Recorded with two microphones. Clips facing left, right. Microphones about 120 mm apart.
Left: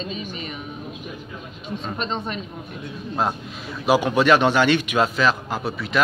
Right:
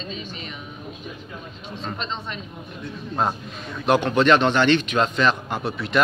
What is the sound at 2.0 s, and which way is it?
Speech, 50° left (ahead or behind).